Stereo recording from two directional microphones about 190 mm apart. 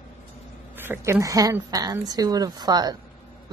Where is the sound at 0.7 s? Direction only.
10° right (ahead or behind).